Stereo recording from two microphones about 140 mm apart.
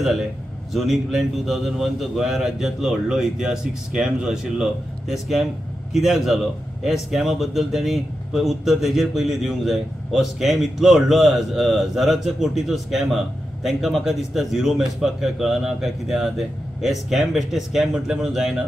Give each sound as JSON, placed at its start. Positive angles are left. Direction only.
{"t": 0.7, "sound": "a man's voice", "side_deg": 0}